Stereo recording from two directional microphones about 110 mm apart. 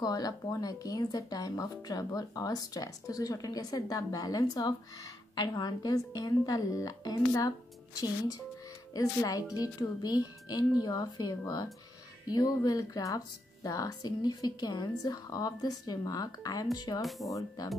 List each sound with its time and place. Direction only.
0.0 s speech: 35° left (ahead or behind)
8.9 s speech: 35° left (ahead or behind)